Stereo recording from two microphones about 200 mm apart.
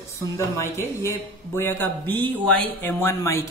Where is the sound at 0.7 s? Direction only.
15° left (ahead or behind).